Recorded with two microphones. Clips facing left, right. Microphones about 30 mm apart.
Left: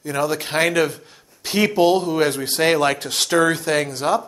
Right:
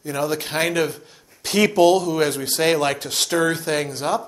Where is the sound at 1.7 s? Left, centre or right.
Left.